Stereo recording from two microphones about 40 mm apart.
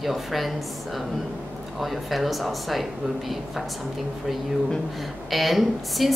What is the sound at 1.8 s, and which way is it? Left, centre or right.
A woman's voice, centre.